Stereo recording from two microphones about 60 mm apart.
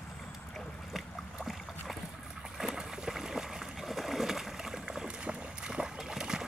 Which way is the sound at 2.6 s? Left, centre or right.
Centre.